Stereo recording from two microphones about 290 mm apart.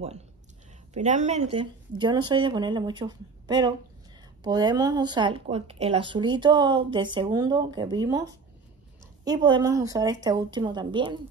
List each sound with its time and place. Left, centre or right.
0.9 s a woman's voice: right